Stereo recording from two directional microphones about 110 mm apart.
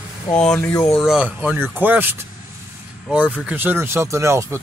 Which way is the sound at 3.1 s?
10° right (ahead or behind).